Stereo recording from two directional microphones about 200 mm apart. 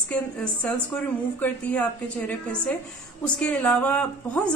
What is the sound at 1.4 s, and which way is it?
A woman's voice, 5° left (ahead or behind).